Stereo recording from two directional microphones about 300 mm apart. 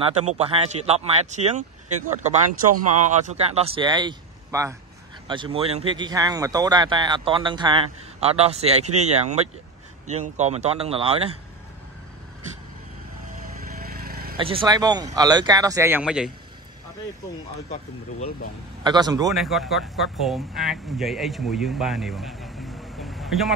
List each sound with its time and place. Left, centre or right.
0.0 s speech: right
13.7 s a sound: right
14.3 s speech: centre
18.9 s speech: centre
19.3 s speech: centre